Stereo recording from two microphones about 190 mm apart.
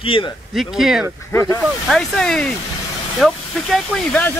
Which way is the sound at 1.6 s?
Centre (ahead or behind).